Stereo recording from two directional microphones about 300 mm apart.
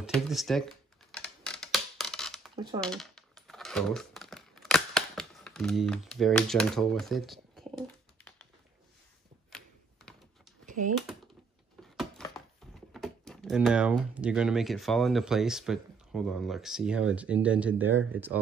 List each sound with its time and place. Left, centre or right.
0.0 s speech: centre
1.1 s a sound: centre
2.5 s speech: centre
2.8 s typing: centre
10.7 s typing: right
12.0 s a sound: centre
12.9 s speech: centre